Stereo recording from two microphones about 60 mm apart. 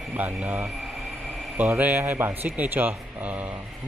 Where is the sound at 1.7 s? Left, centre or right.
Right.